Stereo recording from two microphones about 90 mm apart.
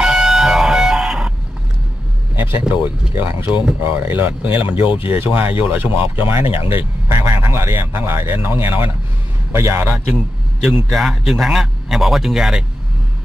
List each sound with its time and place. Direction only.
0.0 s music: 5° right (ahead or behind)
2.3 s vehicle: 25° right (ahead or behind)
2.7 s a man's voice: 20° right (ahead or behind); by 9.9 s 35° right (ahead or behind)
9.9 s a man's voice: 5° right (ahead or behind)